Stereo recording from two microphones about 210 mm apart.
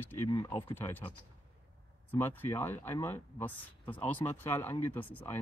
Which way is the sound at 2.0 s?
10° left (ahead or behind).